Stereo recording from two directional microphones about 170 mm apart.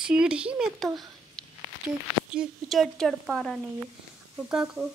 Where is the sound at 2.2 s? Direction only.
5° right (ahead or behind).